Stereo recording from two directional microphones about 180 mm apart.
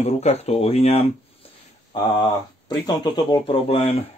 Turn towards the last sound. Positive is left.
turn(degrees=35)  # may be behind; listen again after turning